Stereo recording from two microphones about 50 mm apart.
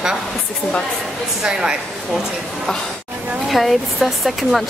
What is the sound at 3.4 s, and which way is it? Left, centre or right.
Speech, centre.